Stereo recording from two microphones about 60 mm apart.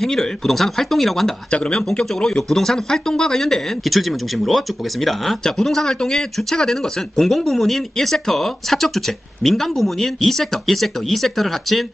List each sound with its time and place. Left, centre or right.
0.0 s speech: centre
1.5 s speech: centre